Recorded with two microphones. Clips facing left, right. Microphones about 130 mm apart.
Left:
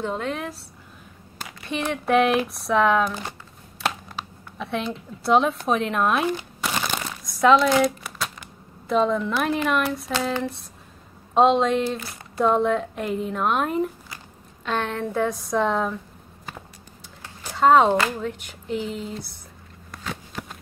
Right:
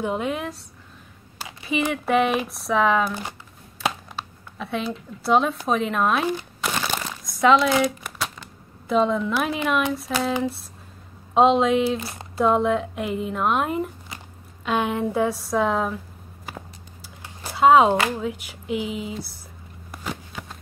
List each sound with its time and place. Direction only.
0.0 s speech: 10° right (ahead or behind)
3.8 s computer keyboard: centre (ahead or behind)
4.6 s speech: centre (ahead or behind)
6.8 s crumpling: centre (ahead or behind)
8.8 s speech: centre (ahead or behind)
17.6 s speech: 5° right (ahead or behind)
17.9 s speech: 15° right (ahead or behind)
18.2 s speech: 5° right (ahead or behind)
20.0 s a sound: 5° right (ahead or behind)